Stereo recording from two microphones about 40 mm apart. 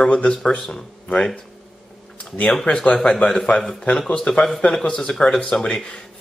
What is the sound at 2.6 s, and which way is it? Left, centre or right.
Speech, left.